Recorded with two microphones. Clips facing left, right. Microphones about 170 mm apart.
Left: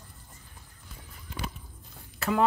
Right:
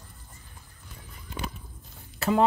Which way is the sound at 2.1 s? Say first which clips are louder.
Right 3 dB; 30° right (ahead or behind).